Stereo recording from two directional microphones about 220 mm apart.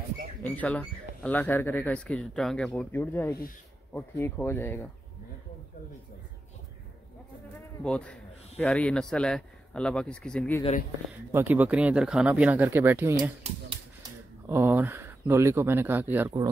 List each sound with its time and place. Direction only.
0.4 s speech: 5° left (ahead or behind)
7.8 s a man's voice: 5° left (ahead or behind)
10.6 s speech: 30° left (ahead or behind)
11.3 s speech: 10° right (ahead or behind)
13.4 s a sound: 25° right (ahead or behind)
14.5 s speech: 10° right (ahead or behind)